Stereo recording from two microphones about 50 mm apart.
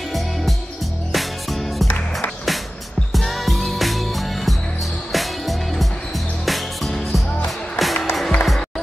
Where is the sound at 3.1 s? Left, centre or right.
Centre.